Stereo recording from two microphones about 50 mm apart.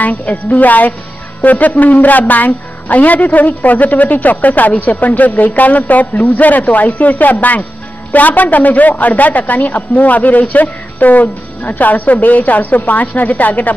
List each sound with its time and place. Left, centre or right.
0.0 s a woman's voice: left